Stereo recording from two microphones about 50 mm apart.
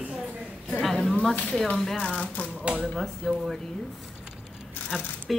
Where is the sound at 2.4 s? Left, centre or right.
Left.